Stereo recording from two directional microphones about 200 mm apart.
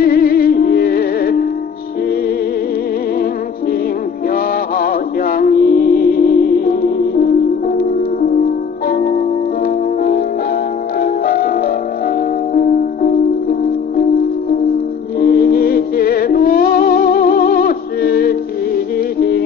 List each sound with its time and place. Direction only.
0.0 s music: 50° left (ahead or behind)
4.3 s music: 50° left (ahead or behind)
11.0 s music: 50° left (ahead or behind)
15.1 s music: 50° left (ahead or behind)